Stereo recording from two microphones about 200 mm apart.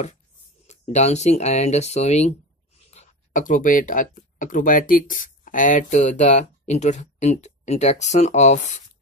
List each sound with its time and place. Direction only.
0.7 s speech: 35° left (ahead or behind)